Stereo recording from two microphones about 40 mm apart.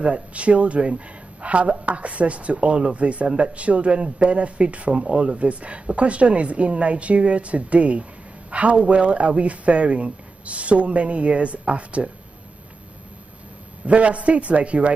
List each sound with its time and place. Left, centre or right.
0.0 s speech: right
13.8 s speech: right